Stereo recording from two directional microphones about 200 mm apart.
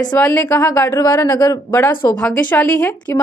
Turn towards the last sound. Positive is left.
turn(degrees=10)  # may be behind; listen again after turning